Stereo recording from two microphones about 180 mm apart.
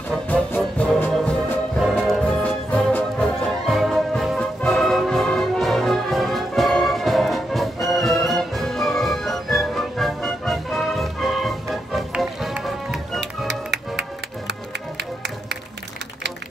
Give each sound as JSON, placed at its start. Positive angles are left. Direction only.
{"t": 0.1, "sound": "music", "side_deg": 10}
{"t": 13.5, "sound": "music", "side_deg": -70}